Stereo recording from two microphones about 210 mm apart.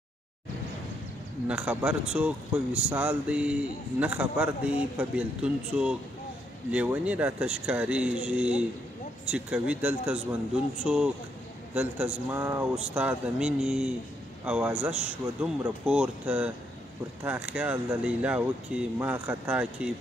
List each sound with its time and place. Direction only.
1.5 s speech: 5° right (ahead or behind)